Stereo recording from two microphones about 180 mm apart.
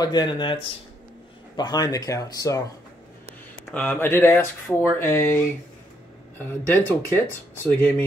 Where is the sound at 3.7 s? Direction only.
10° left (ahead or behind).